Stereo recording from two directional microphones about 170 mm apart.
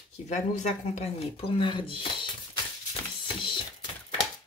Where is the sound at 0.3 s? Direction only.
40° left (ahead or behind).